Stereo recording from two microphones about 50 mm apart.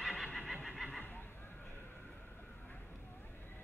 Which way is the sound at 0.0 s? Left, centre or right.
Centre.